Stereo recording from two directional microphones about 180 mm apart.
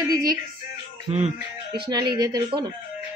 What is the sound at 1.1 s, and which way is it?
Speech, 35° right (ahead or behind).